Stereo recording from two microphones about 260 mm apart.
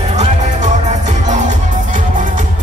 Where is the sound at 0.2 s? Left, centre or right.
Right.